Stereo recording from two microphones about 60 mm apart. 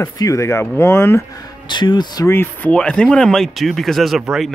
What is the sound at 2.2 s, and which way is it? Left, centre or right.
Speech, left.